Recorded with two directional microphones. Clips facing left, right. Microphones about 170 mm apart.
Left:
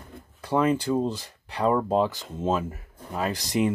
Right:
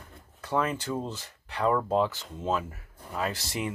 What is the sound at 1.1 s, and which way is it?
Speech, 15° left (ahead or behind).